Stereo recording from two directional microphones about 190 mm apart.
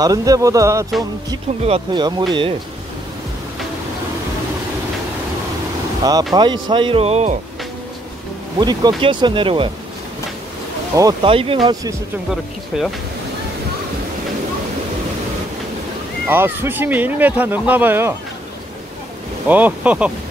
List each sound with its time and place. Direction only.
0.0 s speech: 20° right (ahead or behind)
6.3 s speech: 25° right (ahead or behind)
8.5 s speech: 20° right (ahead or behind)
11.0 s speech: 25° right (ahead or behind)
16.3 s speech: 10° right (ahead or behind)
19.4 s speech: 10° right (ahead or behind)